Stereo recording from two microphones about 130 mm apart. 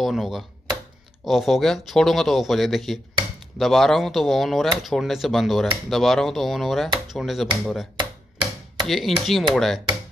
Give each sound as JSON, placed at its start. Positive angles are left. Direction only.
{"t": 0.0, "sound": "speech", "side_deg": 0}
{"t": 8.0, "sound": "chopping", "side_deg": -35}
{"t": 8.8, "sound": "chopping", "side_deg": 0}
{"t": 9.2, "sound": "speech", "side_deg": 0}